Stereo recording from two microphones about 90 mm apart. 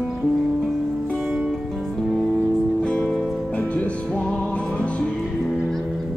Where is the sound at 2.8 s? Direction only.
10° left (ahead or behind).